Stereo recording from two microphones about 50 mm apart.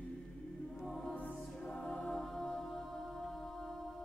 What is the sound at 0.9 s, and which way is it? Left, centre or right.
Choir, centre.